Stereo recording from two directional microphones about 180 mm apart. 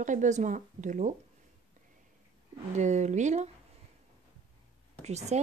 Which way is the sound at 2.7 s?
40° right (ahead or behind).